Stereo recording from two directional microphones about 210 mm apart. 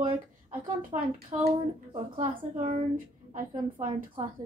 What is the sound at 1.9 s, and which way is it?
A woman's voice, 35° right (ahead or behind).